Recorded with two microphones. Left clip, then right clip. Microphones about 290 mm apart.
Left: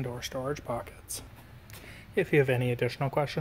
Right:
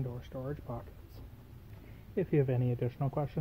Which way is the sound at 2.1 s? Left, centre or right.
Centre.